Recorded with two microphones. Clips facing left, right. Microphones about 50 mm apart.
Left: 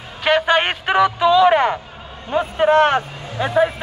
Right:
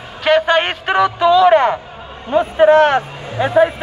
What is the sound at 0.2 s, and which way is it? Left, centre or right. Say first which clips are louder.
A man's voice: right 3 dB; centre.